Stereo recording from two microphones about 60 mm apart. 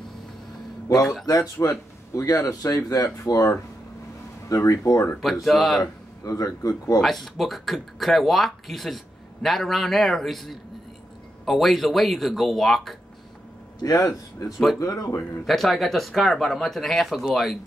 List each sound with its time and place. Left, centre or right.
1.2 s speech: left
4.5 s speech: left
5.2 s speech: centre
6.2 s a man's voice: left
7.0 s speech: centre
13.8 s speech: left
15.4 s speech: centre